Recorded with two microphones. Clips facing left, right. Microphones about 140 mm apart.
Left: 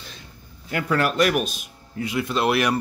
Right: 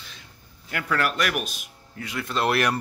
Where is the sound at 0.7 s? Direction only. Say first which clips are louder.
Left 4 dB; 25° left (ahead or behind).